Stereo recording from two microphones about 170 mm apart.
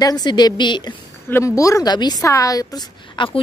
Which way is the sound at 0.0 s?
25° left (ahead or behind).